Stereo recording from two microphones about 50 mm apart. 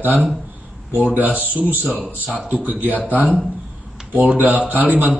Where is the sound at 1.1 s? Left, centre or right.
Right.